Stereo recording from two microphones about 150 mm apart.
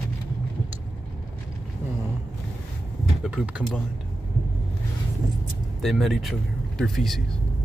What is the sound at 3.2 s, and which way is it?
Speech, 10° right (ahead or behind).